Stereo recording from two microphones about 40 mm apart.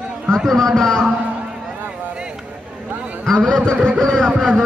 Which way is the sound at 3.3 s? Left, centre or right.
Centre.